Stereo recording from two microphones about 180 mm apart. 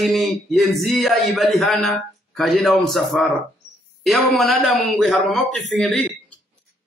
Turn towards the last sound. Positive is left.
turn(degrees=0)  # may be behind; listen again after turning